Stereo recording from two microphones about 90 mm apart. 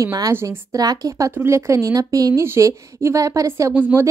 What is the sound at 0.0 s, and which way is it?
Speech, 40° right (ahead or behind).